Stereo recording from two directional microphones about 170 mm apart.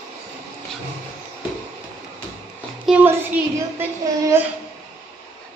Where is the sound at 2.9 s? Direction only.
Centre (ahead or behind).